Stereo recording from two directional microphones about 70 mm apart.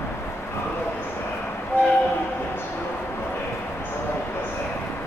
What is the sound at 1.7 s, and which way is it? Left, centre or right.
Train, left.